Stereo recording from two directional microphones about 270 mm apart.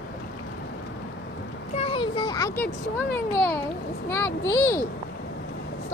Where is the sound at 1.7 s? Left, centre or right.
Left.